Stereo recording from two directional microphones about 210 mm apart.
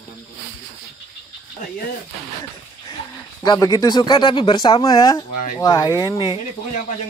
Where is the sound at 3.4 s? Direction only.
20° left (ahead or behind).